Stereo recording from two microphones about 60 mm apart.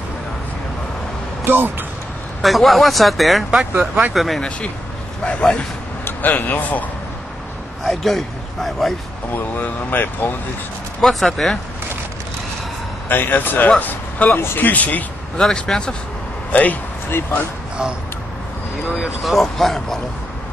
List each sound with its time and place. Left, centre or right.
1.4 s speech: right
2.4 s speech: centre
4.4 s speech: centre
6.0 s a man's voice: left
7.8 s speech: centre
9.3 s speech: left
11.0 s speech: centre
13.1 s speech: left
14.4 s speech: left
14.7 s speech: left
15.3 s speech: centre
17.1 s speech: left
18.9 s speech: centre